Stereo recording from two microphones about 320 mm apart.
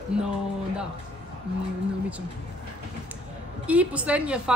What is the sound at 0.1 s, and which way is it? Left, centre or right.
Speech, centre.